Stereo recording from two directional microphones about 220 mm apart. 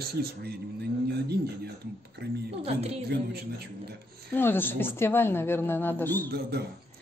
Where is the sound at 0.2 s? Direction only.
45° right (ahead or behind).